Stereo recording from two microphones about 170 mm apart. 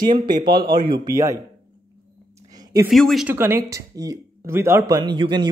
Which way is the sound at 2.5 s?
20° right (ahead or behind).